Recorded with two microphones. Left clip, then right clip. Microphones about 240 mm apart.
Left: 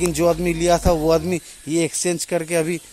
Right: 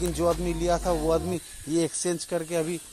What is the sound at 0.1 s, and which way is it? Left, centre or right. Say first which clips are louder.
Speech: left 7 dB; left.